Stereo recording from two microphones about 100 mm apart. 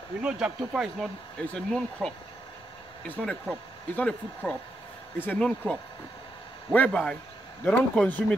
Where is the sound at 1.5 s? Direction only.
5° left (ahead or behind).